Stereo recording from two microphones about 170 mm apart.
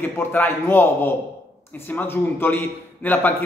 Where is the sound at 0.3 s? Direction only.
10° left (ahead or behind).